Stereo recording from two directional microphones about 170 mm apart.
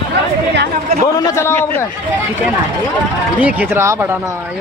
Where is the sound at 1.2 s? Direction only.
15° left (ahead or behind).